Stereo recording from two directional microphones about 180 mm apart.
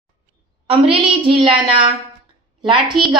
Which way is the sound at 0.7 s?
30° right (ahead or behind).